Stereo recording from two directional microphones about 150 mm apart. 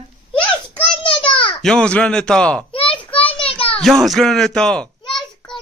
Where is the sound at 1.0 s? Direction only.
35° left (ahead or behind).